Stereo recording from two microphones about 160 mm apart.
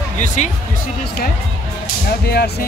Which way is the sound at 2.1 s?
75° left (ahead or behind).